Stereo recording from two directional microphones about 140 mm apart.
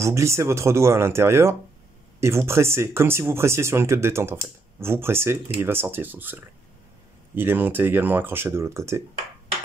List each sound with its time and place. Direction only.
0.0 s speech: 20° right (ahead or behind)